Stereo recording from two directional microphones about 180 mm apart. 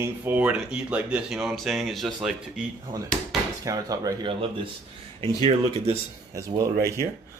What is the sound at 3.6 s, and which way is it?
Speech, 20° right (ahead or behind).